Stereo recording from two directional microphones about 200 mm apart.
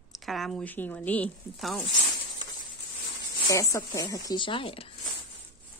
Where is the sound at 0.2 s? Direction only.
Centre (ahead or behind).